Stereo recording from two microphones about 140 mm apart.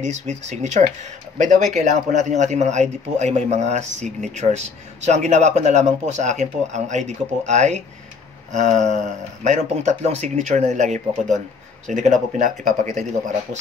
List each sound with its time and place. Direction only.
0.0 s a man's voice: 55° right (ahead or behind)